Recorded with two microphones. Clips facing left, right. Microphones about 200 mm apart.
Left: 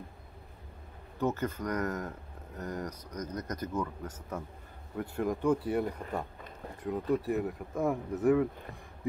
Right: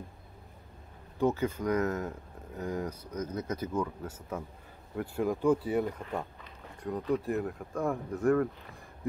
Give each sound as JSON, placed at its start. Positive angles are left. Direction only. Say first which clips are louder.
{"t": 1.2, "sound": "speech", "louder": "right 3 dB", "side_deg": -10}